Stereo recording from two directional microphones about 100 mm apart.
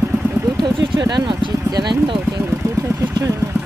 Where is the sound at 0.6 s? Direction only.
45° right (ahead or behind).